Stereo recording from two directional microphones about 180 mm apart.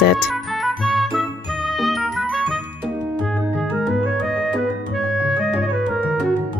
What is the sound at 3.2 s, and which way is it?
Music, 5° left (ahead or behind).